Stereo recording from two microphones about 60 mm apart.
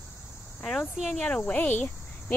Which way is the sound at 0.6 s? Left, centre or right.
Centre.